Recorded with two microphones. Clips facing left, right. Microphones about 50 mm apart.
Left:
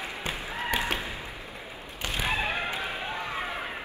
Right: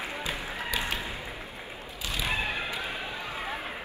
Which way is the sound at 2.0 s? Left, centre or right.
Left.